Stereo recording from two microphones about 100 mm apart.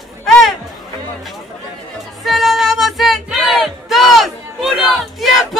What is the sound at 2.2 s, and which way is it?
Music, centre (ahead or behind).